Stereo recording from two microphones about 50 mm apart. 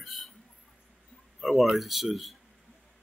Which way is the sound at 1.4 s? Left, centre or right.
Centre.